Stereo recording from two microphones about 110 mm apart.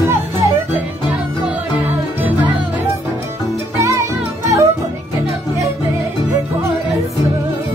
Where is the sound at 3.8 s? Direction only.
30° right (ahead or behind).